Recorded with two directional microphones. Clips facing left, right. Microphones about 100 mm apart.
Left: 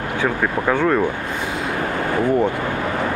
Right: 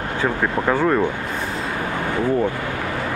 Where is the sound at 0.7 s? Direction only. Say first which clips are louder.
Left 1 dB; 5° right (ahead or behind).